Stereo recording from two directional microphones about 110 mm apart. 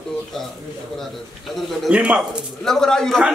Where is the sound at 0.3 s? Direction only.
5° left (ahead or behind).